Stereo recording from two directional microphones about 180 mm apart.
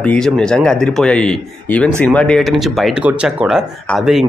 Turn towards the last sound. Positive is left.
turn(degrees=0)  # may be behind; listen again after turning